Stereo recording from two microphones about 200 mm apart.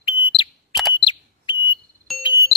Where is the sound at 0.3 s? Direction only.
25° left (ahead or behind).